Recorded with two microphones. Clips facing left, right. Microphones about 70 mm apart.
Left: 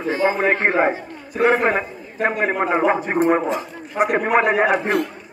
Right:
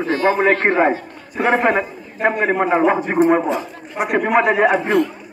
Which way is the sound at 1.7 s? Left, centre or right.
Centre.